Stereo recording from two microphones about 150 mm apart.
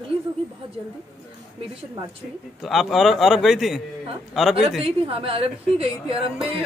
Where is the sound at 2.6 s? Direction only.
Centre (ahead or behind).